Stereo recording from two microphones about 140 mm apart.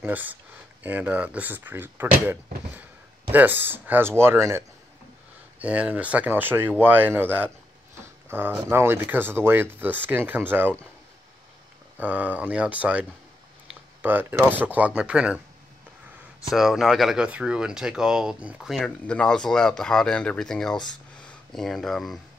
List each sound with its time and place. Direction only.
0.0 s speech: 15° right (ahead or behind)
12.0 s speech: 10° right (ahead or behind)
14.0 s speech: 15° right (ahead or behind)
16.5 s speech: centre (ahead or behind)
20.7 s speech: 30° left (ahead or behind)
21.2 s speech: 5° left (ahead or behind)